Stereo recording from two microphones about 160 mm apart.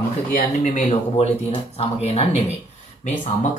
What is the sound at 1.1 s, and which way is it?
Speech, 35° left (ahead or behind).